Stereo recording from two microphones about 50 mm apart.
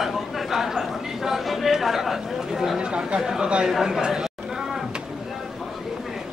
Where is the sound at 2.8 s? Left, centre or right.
Centre.